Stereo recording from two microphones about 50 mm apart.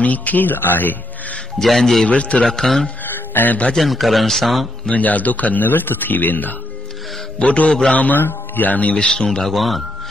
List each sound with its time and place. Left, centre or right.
0.0 s speech: left
1.6 s speech: centre
2.0 s a man's voice: left
2.4 s a man's voice: centre
3.0 s a sound: left
3.7 s speech: centre
4.9 s speech: left
7.3 s a man's voice: left
8.2 s speech: left
8.9 s a man's voice: centre
9.4 s speech: centre